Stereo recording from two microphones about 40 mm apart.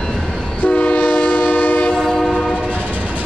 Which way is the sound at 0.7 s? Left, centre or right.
Left.